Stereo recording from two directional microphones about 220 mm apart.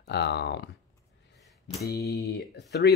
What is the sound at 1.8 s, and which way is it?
Speech, 45° left (ahead or behind).